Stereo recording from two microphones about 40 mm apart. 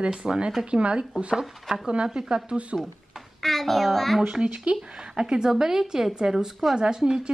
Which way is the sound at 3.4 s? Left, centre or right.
Centre.